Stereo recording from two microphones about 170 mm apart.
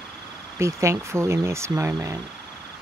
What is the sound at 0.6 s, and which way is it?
Speech, 15° right (ahead or behind).